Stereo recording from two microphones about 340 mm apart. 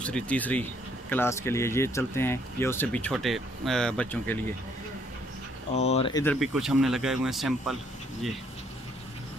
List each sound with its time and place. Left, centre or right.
0.0 s speech: centre
5.8 s speech: centre
6.4 s speech: centre